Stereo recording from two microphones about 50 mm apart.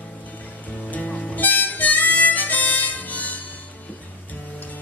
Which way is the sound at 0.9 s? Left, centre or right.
Left.